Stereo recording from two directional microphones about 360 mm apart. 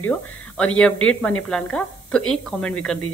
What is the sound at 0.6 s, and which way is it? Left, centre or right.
Speech, centre.